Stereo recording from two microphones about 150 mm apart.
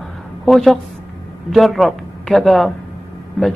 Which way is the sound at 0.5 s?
Centre (ahead or behind).